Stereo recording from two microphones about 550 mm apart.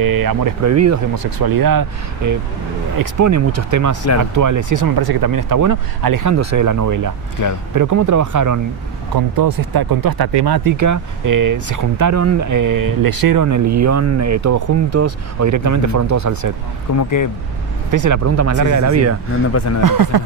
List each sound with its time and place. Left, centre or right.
0.0 s speech: right
7.4 s speech: left
7.7 s speech: right
16.9 s speech: left
17.9 s speech: right
19.5 s speech: left
19.8 s speech: right